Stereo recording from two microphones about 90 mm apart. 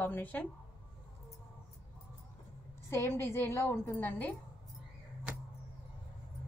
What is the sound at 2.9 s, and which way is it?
Speech, 30° left (ahead or behind).